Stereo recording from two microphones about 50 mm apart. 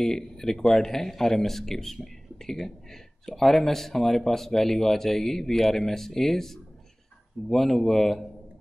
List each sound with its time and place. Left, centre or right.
0.0 s a man's voice: centre